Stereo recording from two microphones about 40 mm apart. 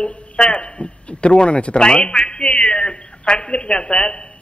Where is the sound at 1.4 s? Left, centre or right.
Left.